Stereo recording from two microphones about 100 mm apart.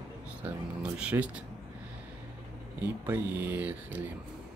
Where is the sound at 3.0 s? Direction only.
20° right (ahead or behind).